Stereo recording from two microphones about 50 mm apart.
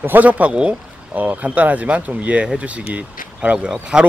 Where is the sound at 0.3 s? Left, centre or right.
Right.